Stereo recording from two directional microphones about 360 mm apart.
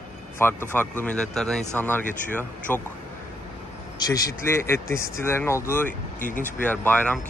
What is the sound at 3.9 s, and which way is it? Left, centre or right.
Speech, centre.